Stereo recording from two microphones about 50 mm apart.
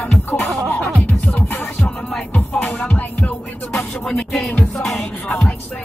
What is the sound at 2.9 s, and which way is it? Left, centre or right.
Music, left.